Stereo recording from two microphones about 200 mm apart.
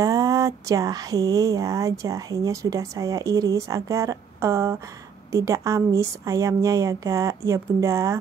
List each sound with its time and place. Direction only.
0.0 s speech: 15° right (ahead or behind)